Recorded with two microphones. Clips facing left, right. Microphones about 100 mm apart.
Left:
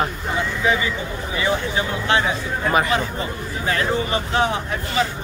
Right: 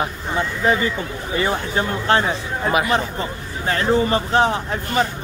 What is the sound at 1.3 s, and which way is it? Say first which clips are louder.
Speech: right 1 dB; 45° right (ahead or behind).